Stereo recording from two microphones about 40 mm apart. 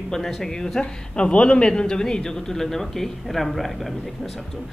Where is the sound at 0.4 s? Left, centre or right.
Centre.